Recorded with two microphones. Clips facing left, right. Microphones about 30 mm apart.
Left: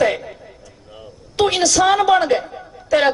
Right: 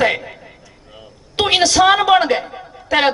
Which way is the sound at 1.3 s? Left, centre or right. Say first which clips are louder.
Right 2 dB; right.